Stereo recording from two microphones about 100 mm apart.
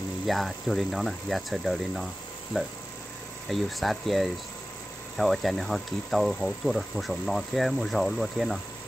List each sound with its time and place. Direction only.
0.3 s speech: centre (ahead or behind)